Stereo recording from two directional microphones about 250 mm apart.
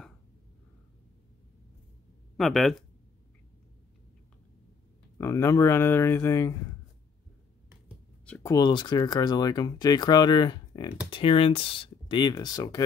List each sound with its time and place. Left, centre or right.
2.3 s speech: centre
5.2 s speech: centre
8.3 s speech: centre